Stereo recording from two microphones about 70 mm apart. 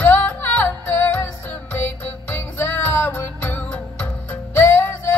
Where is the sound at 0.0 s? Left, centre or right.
Left.